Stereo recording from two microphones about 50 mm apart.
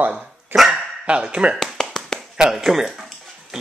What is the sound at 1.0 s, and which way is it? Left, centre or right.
Speech, right.